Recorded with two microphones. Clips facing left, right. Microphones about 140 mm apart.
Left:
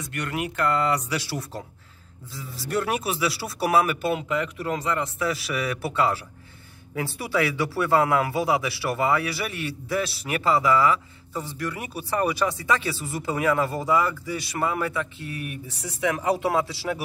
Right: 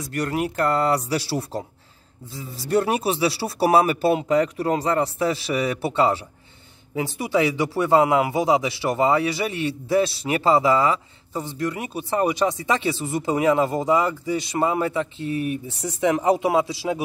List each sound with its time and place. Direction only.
0.0 s speech: 40° right (ahead or behind)
2.7 s a man's voice: 25° right (ahead or behind)